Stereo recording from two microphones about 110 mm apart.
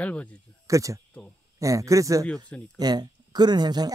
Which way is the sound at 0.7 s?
30° right (ahead or behind).